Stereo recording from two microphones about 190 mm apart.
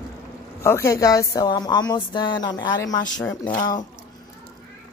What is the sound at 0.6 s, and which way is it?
Speech, 15° left (ahead or behind).